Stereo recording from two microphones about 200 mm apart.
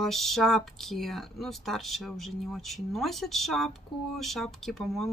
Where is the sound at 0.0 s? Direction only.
Centre (ahead or behind).